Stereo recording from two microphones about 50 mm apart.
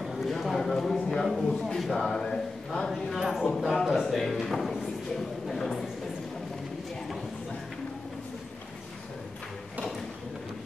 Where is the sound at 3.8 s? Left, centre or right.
Centre.